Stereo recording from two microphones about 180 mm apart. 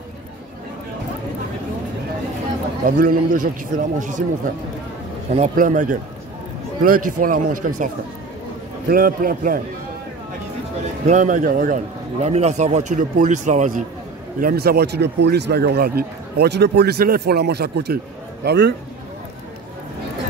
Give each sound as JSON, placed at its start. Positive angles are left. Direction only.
{"t": 3.0, "sound": "a man's voice", "side_deg": -50}
{"t": 5.3, "sound": "a man's voice", "side_deg": -40}
{"t": 11.1, "sound": "a man's voice", "side_deg": -45}
{"t": 14.4, "sound": "a man's voice", "side_deg": -55}